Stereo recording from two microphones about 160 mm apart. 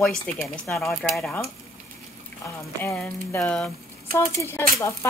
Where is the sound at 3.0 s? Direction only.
5° left (ahead or behind).